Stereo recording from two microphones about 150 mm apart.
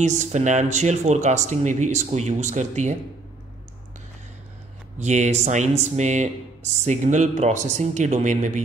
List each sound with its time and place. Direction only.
0.0 s speech: 50° right (ahead or behind)
4.9 s speech: 50° right (ahead or behind)